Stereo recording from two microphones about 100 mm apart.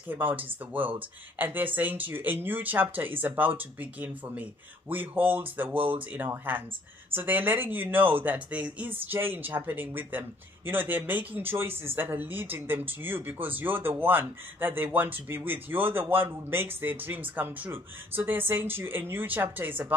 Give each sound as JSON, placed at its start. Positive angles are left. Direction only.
{"t": 0.1, "sound": "speech", "side_deg": -20}